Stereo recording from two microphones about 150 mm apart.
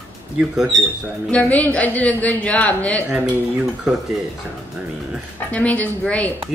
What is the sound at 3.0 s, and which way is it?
Speech, 5° right (ahead or behind).